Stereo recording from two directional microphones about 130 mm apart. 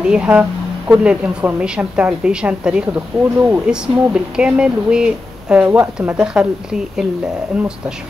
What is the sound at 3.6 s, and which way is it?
Speech, 5° right (ahead or behind).